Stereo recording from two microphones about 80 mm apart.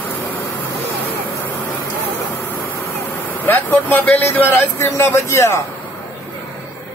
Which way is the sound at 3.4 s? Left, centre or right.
Left.